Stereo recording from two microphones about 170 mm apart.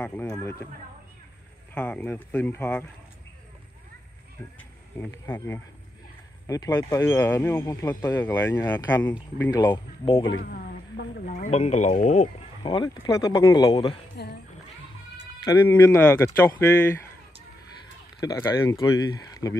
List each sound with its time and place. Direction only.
0.0 s speech: 15° left (ahead or behind)
1.7 s speech: 10° left (ahead or behind)
4.6 s speech: 10° left (ahead or behind)
9.4 s speech: 20° left (ahead or behind)
10.4 s a woman's voice: 65° left (ahead or behind)
11.3 s speech: 45° left (ahead or behind)
12.6 s speech: 25° left (ahead or behind)
14.2 s speech: 70° left (ahead or behind)
15.4 s speech: 20° left (ahead or behind)
18.2 s speech: 20° left (ahead or behind)